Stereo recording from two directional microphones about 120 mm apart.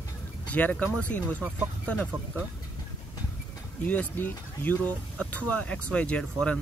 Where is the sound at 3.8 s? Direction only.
15° left (ahead or behind).